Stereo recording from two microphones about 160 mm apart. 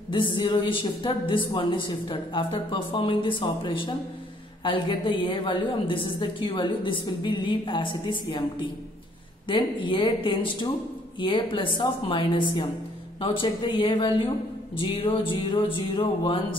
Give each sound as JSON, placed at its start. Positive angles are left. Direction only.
{"t": 0.1, "sound": "a woman's voice", "side_deg": 30}